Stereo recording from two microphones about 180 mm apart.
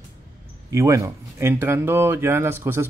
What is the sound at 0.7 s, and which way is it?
Speech, 15° right (ahead or behind).